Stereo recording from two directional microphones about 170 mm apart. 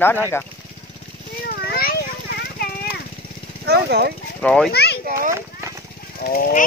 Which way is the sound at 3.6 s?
75° right (ahead or behind).